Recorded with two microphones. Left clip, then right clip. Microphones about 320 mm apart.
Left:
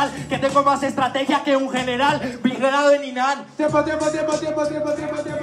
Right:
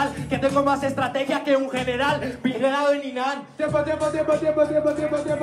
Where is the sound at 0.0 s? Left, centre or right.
Left; by 4.6 s centre.